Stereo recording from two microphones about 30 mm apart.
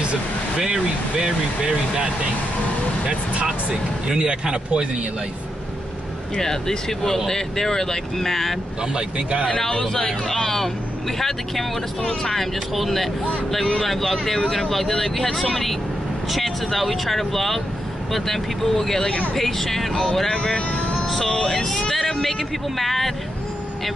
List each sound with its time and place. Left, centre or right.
4.1 s speech: right
6.3 s speech: centre
8.9 s speech: right
9.7 s speech: left
12.7 s speech: centre
14.2 s speech: centre
16.3 s speech: centre
20.5 s speech: left
21.1 s speech: centre
22.8 s speech: centre